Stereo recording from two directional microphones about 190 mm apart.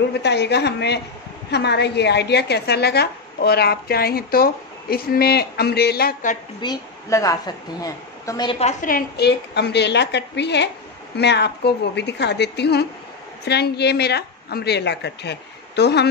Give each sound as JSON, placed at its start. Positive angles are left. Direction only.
{"t": 0.2, "sound": "speech", "side_deg": 65}
{"t": 6.6, "sound": "a woman's voice", "side_deg": 20}
{"t": 8.5, "sound": "a woman's voice", "side_deg": 35}
{"t": 8.9, "sound": "speech", "side_deg": 60}